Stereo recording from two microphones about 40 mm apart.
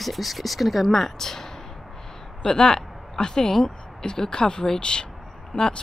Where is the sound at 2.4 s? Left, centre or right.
Centre.